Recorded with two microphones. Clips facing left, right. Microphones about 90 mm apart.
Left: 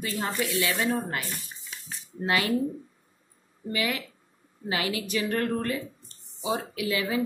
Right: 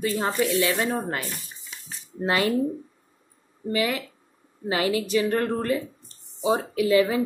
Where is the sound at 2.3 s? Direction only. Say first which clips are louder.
Right 3 dB; 35° right (ahead or behind).